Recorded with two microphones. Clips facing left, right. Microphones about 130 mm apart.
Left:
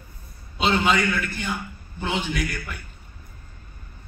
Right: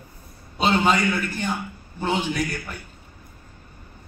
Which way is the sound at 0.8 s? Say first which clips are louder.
Right 1 dB; 35° right (ahead or behind).